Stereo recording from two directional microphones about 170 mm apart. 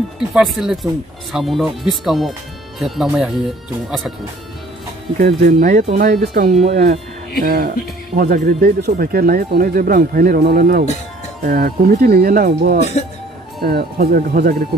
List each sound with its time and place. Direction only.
0.3 s speech: centre (ahead or behind)
5.2 s speech: 50° right (ahead or behind)
6.5 s speech: 45° right (ahead or behind); by 14.6 s 60° right (ahead or behind)